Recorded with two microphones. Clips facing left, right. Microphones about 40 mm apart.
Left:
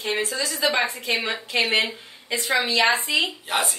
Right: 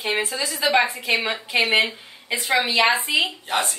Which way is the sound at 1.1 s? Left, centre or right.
Right.